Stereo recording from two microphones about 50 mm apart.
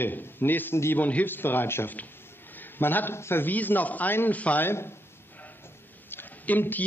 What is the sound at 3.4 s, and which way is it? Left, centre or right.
A man's voice, left.